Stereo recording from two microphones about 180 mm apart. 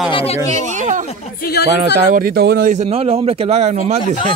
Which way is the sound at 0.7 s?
45° right (ahead or behind).